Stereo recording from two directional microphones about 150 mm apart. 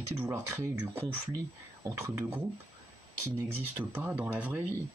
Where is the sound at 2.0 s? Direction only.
20° right (ahead or behind).